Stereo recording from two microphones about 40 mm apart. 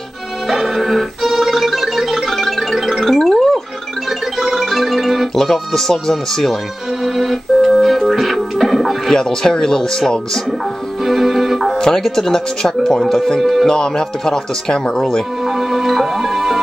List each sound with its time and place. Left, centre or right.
0.5 s music: centre
5.3 s speech: centre
7.0 s music: centre
9.1 s speech: centre
11.0 s music: centre
11.8 s speech: centre
13.4 s speech: centre
13.7 s speech: centre
15.4 s music: centre